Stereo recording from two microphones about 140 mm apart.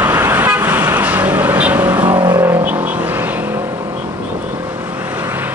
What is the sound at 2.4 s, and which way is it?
Vehicle, 10° right (ahead or behind).